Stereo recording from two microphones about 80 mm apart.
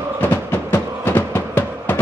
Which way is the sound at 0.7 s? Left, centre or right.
Left.